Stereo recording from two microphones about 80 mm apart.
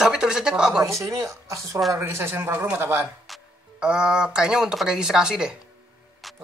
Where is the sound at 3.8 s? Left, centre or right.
Centre.